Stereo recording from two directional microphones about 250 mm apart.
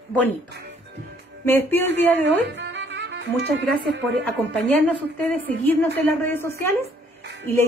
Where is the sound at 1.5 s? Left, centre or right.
Centre.